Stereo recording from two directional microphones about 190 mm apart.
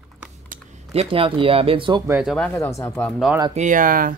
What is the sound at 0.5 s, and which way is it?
Computer keyboard, 45° right (ahead or behind).